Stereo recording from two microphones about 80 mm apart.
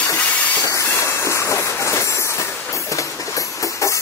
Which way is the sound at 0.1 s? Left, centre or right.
Left.